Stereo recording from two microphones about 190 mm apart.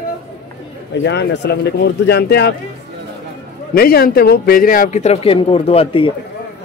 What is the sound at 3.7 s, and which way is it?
Speech, 50° left (ahead or behind).